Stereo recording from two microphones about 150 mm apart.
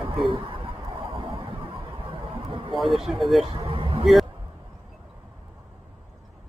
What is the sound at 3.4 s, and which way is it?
Vehicle, 40° right (ahead or behind).